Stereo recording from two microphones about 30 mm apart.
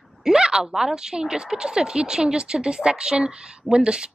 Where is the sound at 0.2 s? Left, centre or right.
Centre.